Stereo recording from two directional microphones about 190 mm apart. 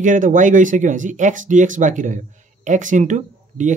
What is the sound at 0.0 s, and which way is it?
Speech, 40° right (ahead or behind).